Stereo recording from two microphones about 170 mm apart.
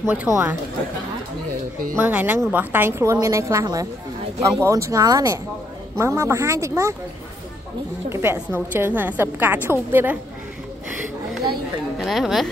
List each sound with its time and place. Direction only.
0.0 s a woman's voice: 10° right (ahead or behind)
2.0 s a woman's voice: 10° right (ahead or behind)
8.1 s a woman's voice: 15° right (ahead or behind)
12.0 s speech: centre (ahead or behind)